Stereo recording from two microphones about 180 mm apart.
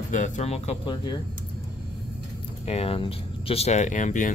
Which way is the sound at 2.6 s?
35° left (ahead or behind).